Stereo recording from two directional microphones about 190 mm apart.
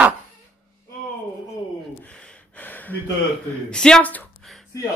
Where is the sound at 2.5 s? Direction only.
10° left (ahead or behind).